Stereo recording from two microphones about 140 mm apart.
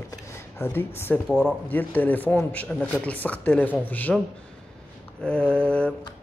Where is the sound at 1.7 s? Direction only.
10° left (ahead or behind).